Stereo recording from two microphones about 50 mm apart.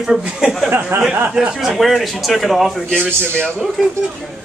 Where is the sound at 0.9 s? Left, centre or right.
Right.